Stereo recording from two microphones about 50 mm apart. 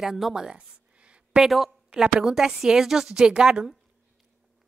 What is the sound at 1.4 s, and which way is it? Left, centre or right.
A woman's voice, centre.